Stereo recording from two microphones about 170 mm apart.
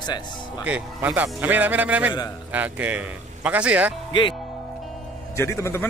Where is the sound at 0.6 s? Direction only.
10° right (ahead or behind).